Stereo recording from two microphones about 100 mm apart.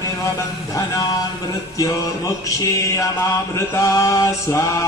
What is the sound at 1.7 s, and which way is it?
Music, 35° left (ahead or behind).